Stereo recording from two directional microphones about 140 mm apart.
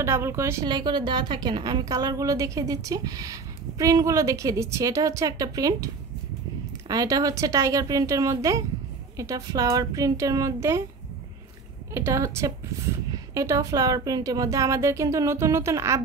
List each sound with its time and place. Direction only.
0.0 s a woman's voice: 20° right (ahead or behind)
0.7 s a woman's voice: 30° right (ahead or behind)
6.9 s a woman's voice: 25° right (ahead or behind)
11.9 s a woman's voice: 20° right (ahead or behind)